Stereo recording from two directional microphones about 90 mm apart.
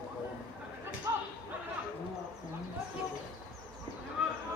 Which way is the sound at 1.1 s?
35° right (ahead or behind).